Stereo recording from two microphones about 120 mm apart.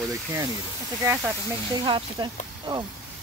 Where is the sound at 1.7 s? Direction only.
40° right (ahead or behind).